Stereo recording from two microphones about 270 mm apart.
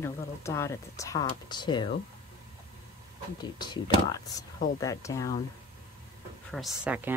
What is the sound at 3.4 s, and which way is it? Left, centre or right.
Speech, centre.